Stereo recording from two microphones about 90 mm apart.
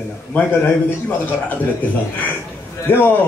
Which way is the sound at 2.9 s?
25° left (ahead or behind).